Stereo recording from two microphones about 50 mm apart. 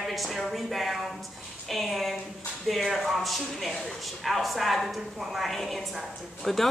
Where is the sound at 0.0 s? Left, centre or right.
Centre.